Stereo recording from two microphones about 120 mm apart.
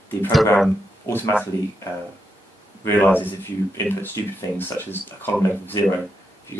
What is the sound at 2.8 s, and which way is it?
Speech, 15° left (ahead or behind).